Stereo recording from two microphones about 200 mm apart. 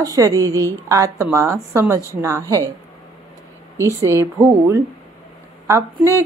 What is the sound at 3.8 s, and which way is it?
Speech, 15° right (ahead or behind).